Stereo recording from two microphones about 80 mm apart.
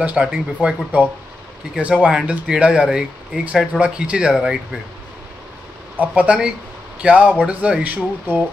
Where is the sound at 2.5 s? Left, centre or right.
Centre.